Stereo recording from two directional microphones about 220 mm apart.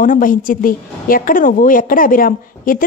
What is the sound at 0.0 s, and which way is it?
A woman's voice, 40° left (ahead or behind).